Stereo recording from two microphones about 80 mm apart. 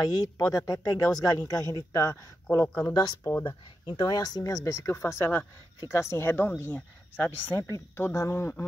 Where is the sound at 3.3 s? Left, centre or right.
Left.